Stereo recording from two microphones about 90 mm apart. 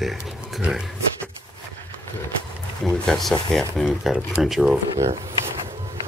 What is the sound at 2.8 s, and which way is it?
Speech, 5° left (ahead or behind).